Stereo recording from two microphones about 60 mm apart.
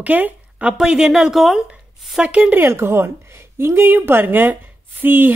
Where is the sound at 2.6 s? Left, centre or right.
Right.